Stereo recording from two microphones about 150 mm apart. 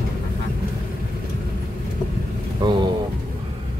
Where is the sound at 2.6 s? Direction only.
30° right (ahead or behind).